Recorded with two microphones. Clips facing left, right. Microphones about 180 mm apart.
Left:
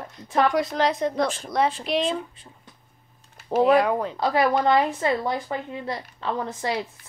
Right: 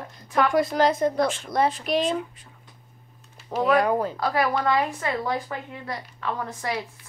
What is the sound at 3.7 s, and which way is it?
Speech, centre (ahead or behind).